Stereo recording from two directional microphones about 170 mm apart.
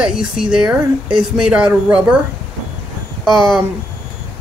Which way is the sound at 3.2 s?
Centre (ahead or behind).